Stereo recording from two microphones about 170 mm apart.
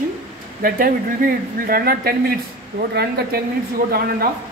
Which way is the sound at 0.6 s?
55° right (ahead or behind).